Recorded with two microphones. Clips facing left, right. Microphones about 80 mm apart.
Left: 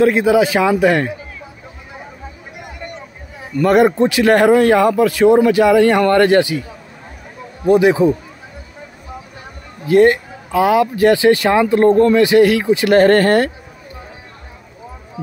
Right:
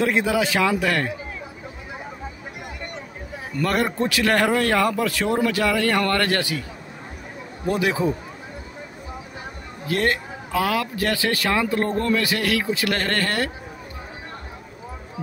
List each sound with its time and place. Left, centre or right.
0.0 s a man's voice: centre
3.6 s a man's voice: centre
7.6 s a man's voice: centre
9.8 s a man's voice: centre
12.9 s speech: left